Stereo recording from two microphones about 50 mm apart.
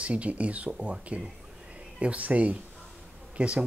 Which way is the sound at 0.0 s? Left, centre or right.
Right.